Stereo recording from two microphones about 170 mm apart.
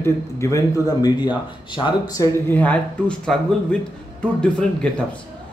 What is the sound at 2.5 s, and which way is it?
Speech, 10° left (ahead or behind).